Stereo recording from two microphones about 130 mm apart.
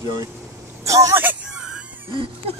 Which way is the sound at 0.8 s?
25° right (ahead or behind).